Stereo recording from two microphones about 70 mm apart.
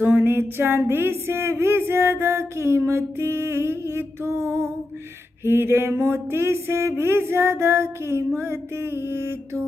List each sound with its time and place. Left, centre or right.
0.0 s music: right